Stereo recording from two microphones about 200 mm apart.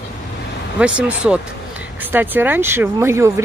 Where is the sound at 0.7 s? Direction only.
5° right (ahead or behind).